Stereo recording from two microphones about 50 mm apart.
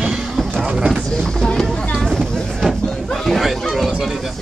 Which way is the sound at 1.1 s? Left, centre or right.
Centre.